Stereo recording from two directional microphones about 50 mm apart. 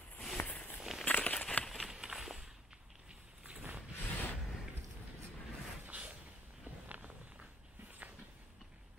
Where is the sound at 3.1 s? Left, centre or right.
Right.